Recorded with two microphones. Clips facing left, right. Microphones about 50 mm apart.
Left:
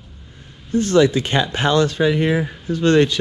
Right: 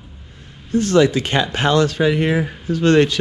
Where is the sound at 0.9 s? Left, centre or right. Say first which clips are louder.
Even; right.